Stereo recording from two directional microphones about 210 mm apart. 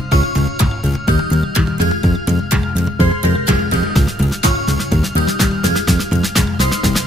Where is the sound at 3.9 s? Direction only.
Centre (ahead or behind).